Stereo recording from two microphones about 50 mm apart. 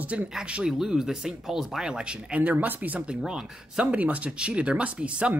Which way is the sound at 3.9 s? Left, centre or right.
Right.